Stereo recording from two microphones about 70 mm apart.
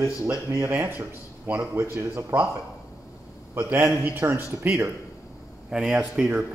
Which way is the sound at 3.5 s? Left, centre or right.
Right.